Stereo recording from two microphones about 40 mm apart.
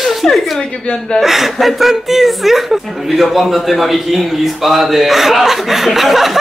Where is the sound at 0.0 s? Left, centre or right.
Centre.